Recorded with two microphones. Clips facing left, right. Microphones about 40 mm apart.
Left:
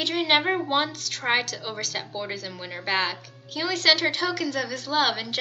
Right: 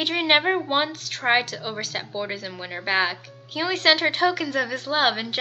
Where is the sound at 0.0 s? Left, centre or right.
Centre.